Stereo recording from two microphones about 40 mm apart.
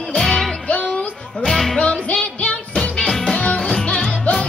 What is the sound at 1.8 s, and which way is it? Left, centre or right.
Music, left.